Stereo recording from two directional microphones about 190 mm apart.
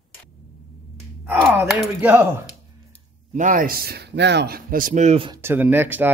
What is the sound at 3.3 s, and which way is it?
Speech, 40° right (ahead or behind).